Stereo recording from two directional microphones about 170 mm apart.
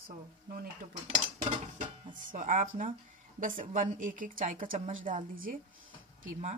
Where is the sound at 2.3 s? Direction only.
50° right (ahead or behind).